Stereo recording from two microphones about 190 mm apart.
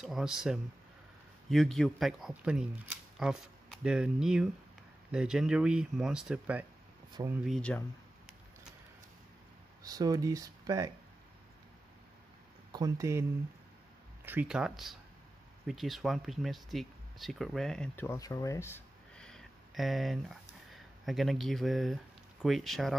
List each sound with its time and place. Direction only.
0.0 s speech: centre (ahead or behind)
9.8 s speech: 20° right (ahead or behind)
12.7 s speech: 15° right (ahead or behind)
14.2 s speech: 10° right (ahead or behind)